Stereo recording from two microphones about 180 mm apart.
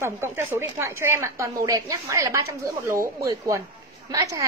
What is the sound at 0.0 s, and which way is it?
A woman's voice, 15° right (ahead or behind).